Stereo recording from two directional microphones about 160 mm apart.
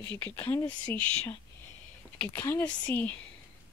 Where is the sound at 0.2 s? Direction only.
15° left (ahead or behind).